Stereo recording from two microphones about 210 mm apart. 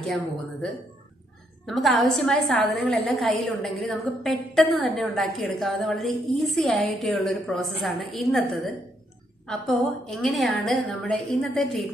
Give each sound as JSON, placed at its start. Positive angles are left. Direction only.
{"t": 0.0, "sound": "a woman's voice", "side_deg": 0}
{"t": 1.7, "sound": "a woman's voice", "side_deg": 0}